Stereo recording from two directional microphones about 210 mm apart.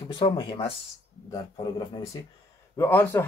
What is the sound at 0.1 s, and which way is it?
Speech, 25° left (ahead or behind).